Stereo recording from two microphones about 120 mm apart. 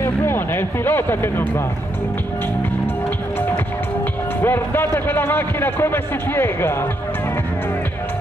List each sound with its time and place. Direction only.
0.0 s speech: 20° left (ahead or behind)
4.4 s speech: 15° left (ahead or behind)